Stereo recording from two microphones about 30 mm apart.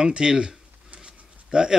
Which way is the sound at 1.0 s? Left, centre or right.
Right.